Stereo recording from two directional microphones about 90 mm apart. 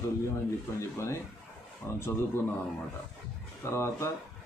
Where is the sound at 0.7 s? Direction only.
30° left (ahead or behind).